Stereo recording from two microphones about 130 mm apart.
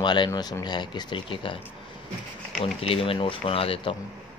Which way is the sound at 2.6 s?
45° left (ahead or behind).